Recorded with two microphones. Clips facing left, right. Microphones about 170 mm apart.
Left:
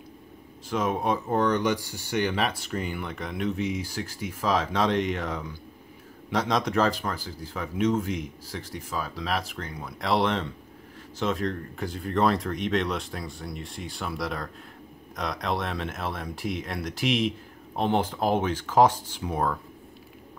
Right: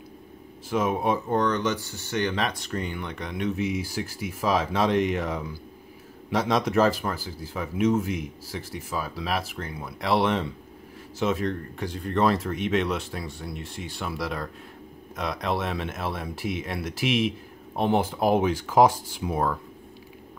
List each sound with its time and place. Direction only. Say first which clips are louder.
0.7 s speech: right 2 dB; 5° right (ahead or behind)
1.3 s speech: even; 10° left (ahead or behind); by 19.5 s 10° right (ahead or behind)